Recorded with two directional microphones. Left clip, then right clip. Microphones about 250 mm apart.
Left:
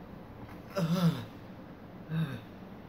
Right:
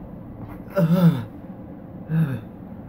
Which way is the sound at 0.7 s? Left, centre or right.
Centre.